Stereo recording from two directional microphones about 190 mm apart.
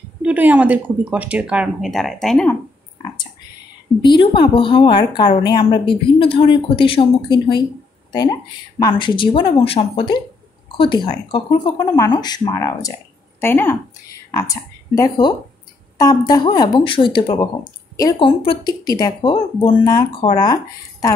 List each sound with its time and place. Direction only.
0.2 s speech: 10° right (ahead or behind)
4.0 s a woman's voice: 25° left (ahead or behind)
8.7 s a woman's voice: 25° left (ahead or behind)